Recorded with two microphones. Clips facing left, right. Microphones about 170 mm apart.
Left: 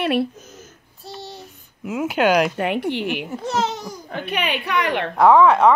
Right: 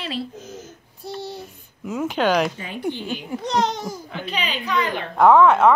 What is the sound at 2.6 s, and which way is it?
Speech, 70° left (ahead or behind).